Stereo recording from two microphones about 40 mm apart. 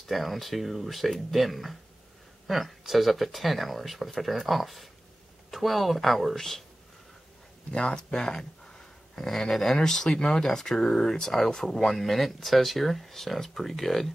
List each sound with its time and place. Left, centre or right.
0.1 s speech: centre
7.7 s speech: left